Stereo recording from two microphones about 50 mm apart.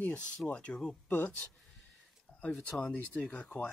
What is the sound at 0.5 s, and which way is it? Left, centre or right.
Speech, left.